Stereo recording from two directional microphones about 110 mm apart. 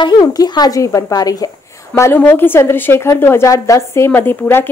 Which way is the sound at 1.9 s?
20° left (ahead or behind).